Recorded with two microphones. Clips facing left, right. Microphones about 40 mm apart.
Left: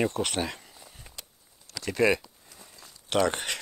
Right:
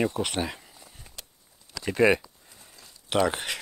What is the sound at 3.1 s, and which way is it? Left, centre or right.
Speech, centre.